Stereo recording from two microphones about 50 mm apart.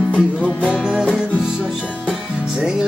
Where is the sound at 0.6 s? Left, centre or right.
Centre.